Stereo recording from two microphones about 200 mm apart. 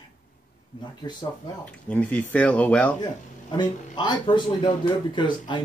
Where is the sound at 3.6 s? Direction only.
20° left (ahead or behind).